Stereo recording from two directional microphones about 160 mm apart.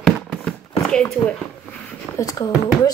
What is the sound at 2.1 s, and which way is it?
Speech, 20° left (ahead or behind).